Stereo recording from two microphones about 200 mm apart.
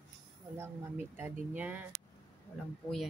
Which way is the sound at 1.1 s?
10° right (ahead or behind).